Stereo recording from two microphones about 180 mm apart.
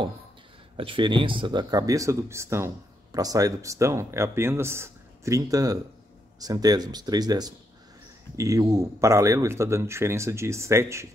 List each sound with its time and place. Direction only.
0.7 s speech: 30° right (ahead or behind)